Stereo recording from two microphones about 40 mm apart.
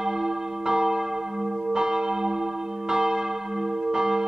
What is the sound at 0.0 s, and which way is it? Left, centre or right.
Church bell, centre.